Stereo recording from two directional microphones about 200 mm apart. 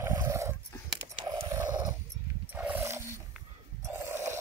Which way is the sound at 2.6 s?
10° right (ahead or behind).